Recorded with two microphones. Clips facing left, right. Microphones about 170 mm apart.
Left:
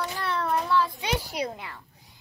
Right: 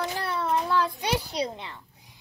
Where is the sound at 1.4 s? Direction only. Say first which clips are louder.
Right 1 dB; 25° right (ahead or behind).